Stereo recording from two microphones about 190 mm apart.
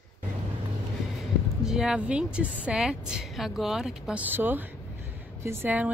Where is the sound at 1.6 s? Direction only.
5° right (ahead or behind).